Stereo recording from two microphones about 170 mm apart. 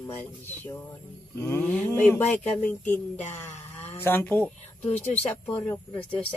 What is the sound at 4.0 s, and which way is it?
Speech, 10° left (ahead or behind).